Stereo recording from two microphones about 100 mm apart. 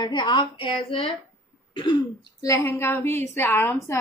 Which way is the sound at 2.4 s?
30° left (ahead or behind).